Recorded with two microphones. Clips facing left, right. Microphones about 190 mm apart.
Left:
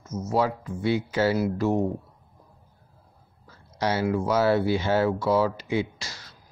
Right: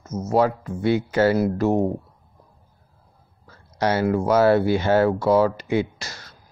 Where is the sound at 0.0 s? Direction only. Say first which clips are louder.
Right 3 dB; 45° right (ahead or behind).